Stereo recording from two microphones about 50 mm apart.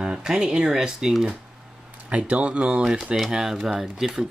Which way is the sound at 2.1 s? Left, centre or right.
Right.